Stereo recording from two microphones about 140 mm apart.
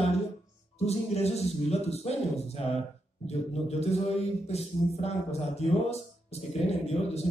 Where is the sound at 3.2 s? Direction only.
50° left (ahead or behind).